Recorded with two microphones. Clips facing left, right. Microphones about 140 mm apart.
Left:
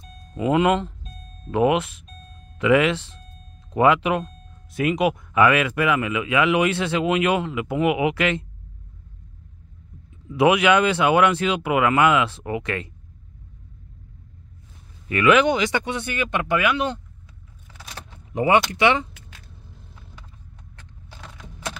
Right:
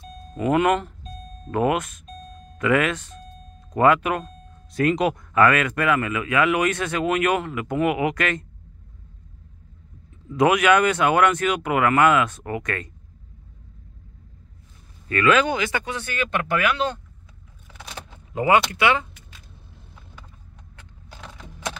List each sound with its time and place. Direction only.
0.4 s speech: 15° left (ahead or behind)
4.7 s speech: 5° left (ahead or behind)
10.4 s speech: 15° left (ahead or behind)
15.0 s speech: 15° left (ahead or behind)
18.3 s speech: 25° left (ahead or behind)